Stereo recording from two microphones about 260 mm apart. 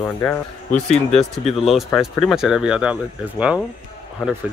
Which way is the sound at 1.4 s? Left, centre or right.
Centre.